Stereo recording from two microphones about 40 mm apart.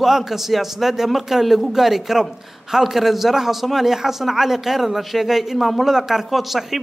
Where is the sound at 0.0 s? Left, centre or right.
Centre.